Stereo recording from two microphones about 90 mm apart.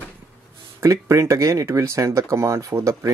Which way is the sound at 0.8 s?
35° right (ahead or behind).